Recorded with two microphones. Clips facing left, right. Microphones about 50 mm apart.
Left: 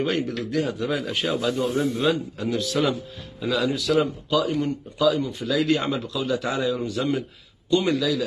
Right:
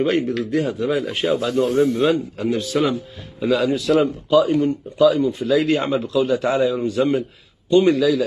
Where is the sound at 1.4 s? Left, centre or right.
Right.